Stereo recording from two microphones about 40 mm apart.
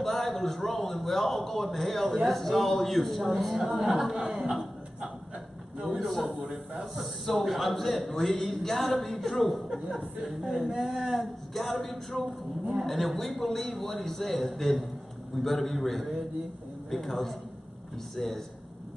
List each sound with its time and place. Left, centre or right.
0.0 s a man's voice: centre
3.7 s speech: centre
5.9 s a man's voice: centre
6.3 s a man's voice: right
6.7 s a man's voice: centre